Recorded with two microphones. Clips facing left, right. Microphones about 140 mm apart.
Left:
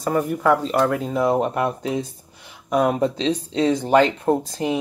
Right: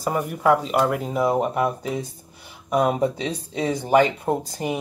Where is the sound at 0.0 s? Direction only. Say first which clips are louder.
Left 2 dB; 15° right (ahead or behind).